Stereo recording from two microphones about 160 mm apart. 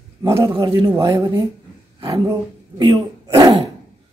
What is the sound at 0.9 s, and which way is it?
Speech, 20° right (ahead or behind).